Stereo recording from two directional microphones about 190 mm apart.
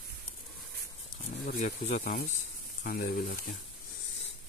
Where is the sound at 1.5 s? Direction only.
40° left (ahead or behind).